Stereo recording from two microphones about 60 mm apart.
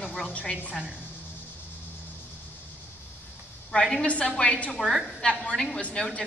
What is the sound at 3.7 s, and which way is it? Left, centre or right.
A woman's voice, centre.